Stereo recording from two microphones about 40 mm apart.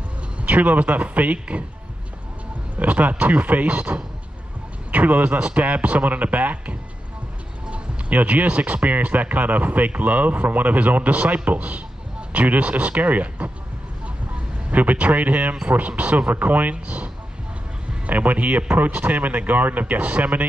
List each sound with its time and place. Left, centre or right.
0.4 s speech: right
2.8 s speech: right
14.0 s vehicle: right
14.8 s speech: right
16.7 s speech: right
18.0 s speech: right